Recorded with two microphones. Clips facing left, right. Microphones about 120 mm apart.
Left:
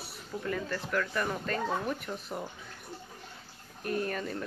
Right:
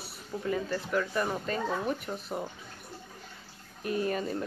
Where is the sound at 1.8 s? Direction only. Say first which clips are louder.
Right 2 dB; 5° right (ahead or behind).